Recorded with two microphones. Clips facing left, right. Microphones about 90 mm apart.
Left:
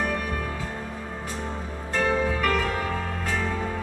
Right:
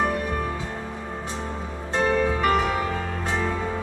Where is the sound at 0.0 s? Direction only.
20° right (ahead or behind).